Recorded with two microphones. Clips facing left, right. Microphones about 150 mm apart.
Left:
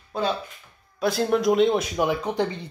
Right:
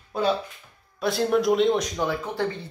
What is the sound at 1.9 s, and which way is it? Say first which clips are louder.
Speech: left 4 dB; 15° left (ahead or behind).